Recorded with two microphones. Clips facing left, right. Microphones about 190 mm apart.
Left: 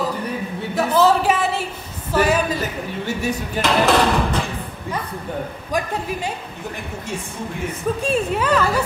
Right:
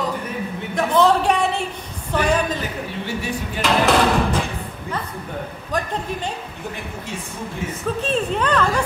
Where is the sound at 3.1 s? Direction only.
45° left (ahead or behind).